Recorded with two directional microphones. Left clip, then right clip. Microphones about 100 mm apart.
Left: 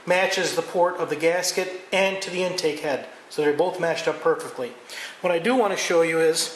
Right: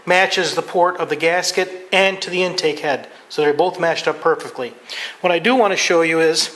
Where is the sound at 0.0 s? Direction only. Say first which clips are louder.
Right 6 dB; 15° right (ahead or behind).